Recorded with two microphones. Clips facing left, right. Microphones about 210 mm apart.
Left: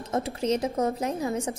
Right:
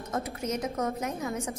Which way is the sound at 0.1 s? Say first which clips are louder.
Left 6 dB; 30° left (ahead or behind).